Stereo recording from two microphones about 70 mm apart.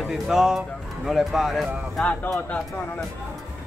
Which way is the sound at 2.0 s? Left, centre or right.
Centre.